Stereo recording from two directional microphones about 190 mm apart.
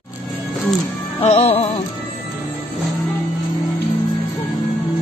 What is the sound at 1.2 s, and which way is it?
Music, 35° left (ahead or behind).